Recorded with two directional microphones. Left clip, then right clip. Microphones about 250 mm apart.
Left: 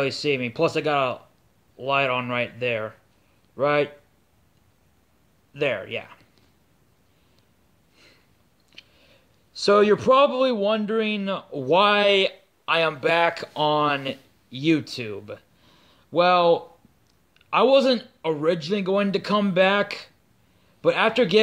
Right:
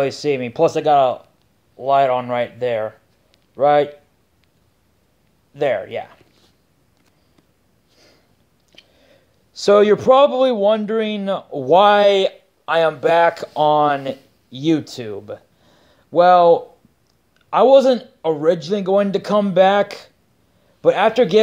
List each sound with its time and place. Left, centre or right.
0.0 s speech: centre
1.8 s speech: left
5.6 s speech: left
8.7 s a sound: centre
9.6 s speech: centre